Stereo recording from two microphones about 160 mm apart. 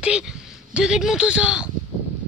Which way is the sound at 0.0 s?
5° right (ahead or behind).